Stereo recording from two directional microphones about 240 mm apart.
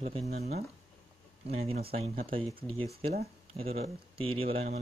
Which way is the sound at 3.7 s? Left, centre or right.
Right.